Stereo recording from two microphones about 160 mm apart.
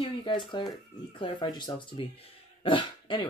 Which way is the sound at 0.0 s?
30° left (ahead or behind).